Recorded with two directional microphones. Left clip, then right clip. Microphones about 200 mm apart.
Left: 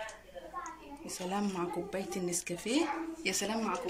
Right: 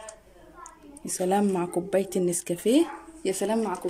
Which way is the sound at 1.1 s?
45° right (ahead or behind).